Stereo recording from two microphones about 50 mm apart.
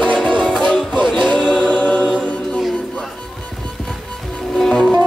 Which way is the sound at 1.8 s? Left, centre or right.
Left.